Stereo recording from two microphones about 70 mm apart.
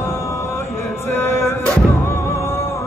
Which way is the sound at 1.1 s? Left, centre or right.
Left.